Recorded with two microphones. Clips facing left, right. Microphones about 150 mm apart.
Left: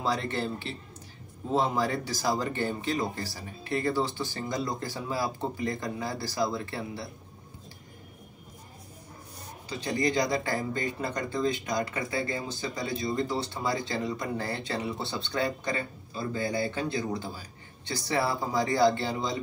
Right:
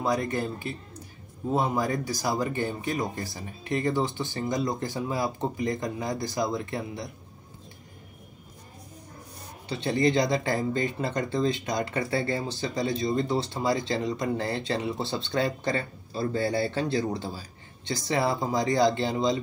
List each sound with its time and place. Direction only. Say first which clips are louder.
0.0 s speech: right 3 dB; 15° right (ahead or behind)
9.7 s speech: right 4 dB; 25° right (ahead or behind)